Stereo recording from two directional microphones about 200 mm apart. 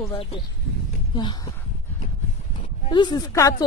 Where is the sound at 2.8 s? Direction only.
20° left (ahead or behind).